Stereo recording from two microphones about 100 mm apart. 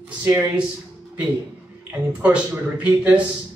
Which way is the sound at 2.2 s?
15° right (ahead or behind).